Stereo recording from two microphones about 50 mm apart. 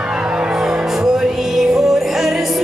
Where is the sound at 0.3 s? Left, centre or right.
Centre.